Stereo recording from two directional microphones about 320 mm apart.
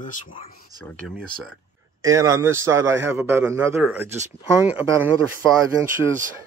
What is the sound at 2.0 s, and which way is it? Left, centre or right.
A man's voice, centre.